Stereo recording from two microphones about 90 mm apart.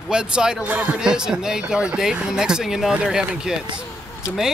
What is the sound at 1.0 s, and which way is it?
Speech, 10° right (ahead or behind).